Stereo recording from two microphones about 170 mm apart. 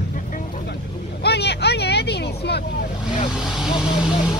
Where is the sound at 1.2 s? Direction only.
75° left (ahead or behind).